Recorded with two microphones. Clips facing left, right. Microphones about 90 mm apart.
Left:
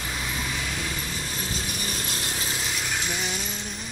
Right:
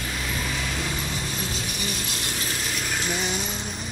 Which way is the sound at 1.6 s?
35° left (ahead or behind).